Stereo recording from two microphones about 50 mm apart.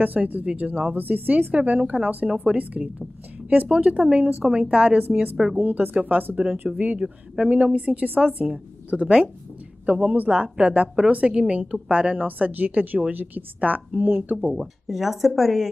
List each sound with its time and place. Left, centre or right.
0.0 s speech: right
1.5 s a woman's voice: right
5.6 s speech: right
7.0 s a woman's voice: right
8.9 s a woman's voice: right
12.3 s speech: right
14.4 s speech: centre